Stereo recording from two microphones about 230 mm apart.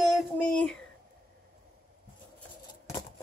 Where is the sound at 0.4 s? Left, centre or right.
Centre.